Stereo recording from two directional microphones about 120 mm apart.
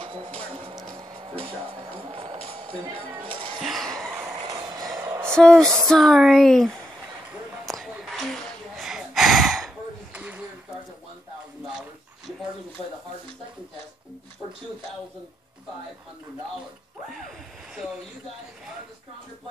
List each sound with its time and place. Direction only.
0.0 s music: 50° right (ahead or behind)
2.0 s music: 55° right (ahead or behind)
3.2 s music: 45° right (ahead or behind)
3.6 s a sound: centre (ahead or behind)
4.6 s vehicle: 30° right (ahead or behind)
5.3 s speech: 5° left (ahead or behind)
7.6 s a sound: centre (ahead or behind)
8.7 s gasp: 5° right (ahead or behind)
10.1 s a sound: 10° right (ahead or behind)